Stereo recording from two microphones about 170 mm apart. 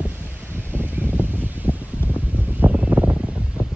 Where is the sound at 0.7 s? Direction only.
10° right (ahead or behind).